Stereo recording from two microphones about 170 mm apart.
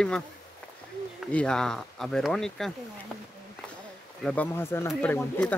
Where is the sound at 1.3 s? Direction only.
5° left (ahead or behind).